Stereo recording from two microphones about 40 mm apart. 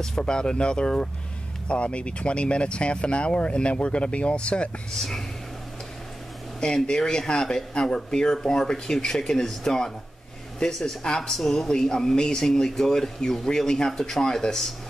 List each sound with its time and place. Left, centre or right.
0.2 s speech: left
6.6 s speech: centre